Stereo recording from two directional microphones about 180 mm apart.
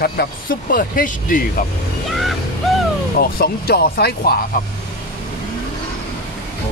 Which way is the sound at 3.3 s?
55° left (ahead or behind).